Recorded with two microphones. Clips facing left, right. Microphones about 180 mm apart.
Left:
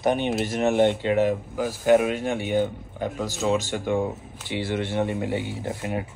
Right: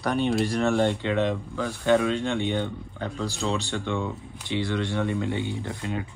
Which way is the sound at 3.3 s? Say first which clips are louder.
Left 5 dB; 40° left (ahead or behind).